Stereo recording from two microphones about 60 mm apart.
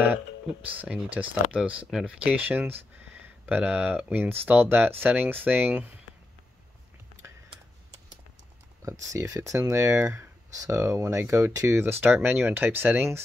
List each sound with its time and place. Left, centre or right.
0.7 s speech: right
1.1 s speech: centre
2.5 s speech: right
3.4 s speech: right
8.8 s speech: right
11.8 s speech: right